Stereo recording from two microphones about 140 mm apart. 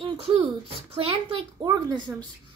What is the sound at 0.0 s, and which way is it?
A woman's voice, 45° right (ahead or behind).